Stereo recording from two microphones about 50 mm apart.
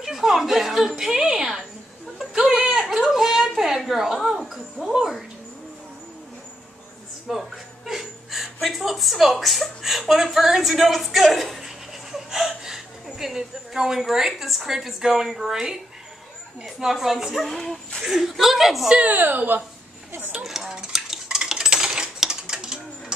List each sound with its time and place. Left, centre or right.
0.0 s a sound: centre
7.2 s chuckle: centre
16.6 s speech: centre
18.0 s speech: centre
18.9 s a woman's voice: right
20.2 s speech: right
20.4 s cutlery: centre